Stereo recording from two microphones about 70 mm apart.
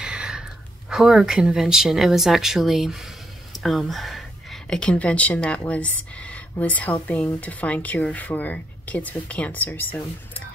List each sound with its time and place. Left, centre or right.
0.0 s speech: centre
3.5 s a sound: centre
4.7 s speech: centre